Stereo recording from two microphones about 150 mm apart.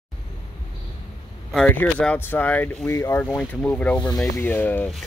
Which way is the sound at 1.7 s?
10° left (ahead or behind).